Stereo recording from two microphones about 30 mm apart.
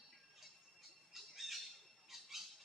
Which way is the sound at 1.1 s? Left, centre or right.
Centre.